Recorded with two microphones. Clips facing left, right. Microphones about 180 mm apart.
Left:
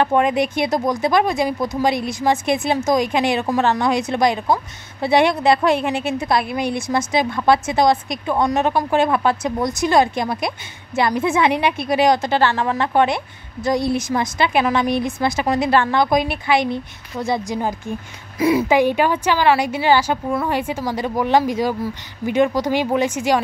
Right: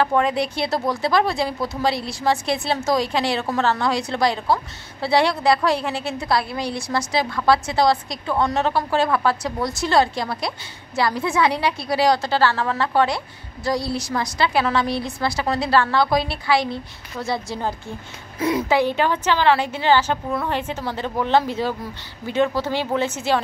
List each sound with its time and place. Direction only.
0.0 s a woman's voice: 20° left (ahead or behind)